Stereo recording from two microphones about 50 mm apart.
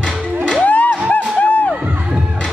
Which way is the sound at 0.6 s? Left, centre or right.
Left.